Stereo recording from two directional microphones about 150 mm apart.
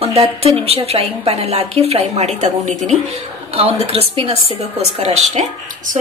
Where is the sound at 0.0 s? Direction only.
45° right (ahead or behind).